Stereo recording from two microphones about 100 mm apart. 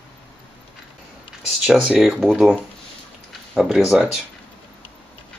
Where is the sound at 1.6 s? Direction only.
5° right (ahead or behind).